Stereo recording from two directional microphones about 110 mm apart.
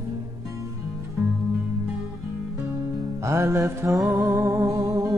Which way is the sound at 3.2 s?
25° right (ahead or behind).